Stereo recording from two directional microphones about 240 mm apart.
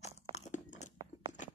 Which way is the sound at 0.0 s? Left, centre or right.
Left.